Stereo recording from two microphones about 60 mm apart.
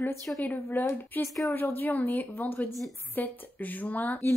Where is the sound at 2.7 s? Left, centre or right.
Centre.